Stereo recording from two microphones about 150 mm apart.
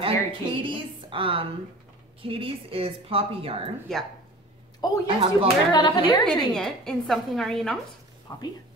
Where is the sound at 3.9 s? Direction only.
5° left (ahead or behind).